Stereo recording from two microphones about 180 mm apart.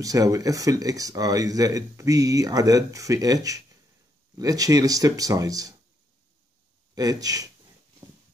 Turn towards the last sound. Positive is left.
turn(degrees=-20)  # may be behind; listen again after turning